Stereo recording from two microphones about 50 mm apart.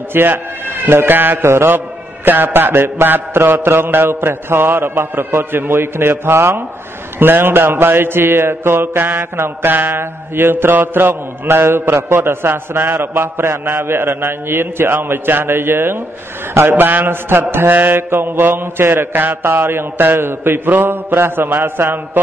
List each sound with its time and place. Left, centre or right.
0.1 s a man's voice: right
7.2 s a man's voice: right